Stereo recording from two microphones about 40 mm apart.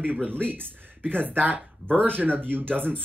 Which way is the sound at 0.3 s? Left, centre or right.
Right.